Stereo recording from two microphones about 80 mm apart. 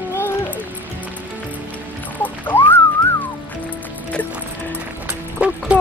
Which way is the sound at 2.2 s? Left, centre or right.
Left.